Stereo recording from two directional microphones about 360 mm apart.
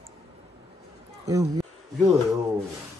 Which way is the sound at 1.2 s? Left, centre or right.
Centre.